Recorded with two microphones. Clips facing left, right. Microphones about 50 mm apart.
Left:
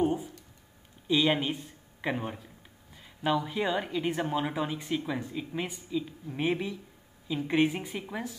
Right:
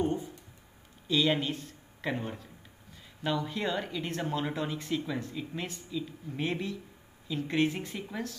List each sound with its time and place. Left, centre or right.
1.0 s speech: centre